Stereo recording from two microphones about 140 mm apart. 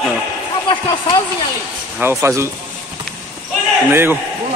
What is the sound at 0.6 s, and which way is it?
Speech, 35° left (ahead or behind).